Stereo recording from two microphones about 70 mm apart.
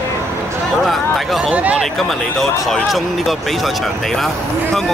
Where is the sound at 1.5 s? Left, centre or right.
Centre.